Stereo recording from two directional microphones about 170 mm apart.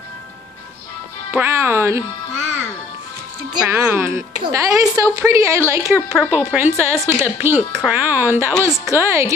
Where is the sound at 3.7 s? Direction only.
15° right (ahead or behind).